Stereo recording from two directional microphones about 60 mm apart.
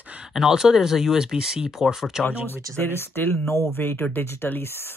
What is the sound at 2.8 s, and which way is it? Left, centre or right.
Speech, left.